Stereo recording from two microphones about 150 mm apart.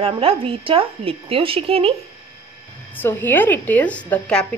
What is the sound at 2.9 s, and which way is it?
A woman's voice, 15° left (ahead or behind).